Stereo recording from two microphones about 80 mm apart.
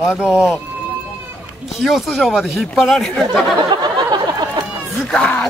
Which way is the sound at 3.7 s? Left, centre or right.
Right.